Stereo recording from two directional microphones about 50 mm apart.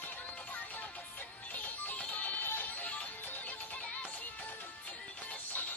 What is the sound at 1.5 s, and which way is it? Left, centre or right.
Music, left.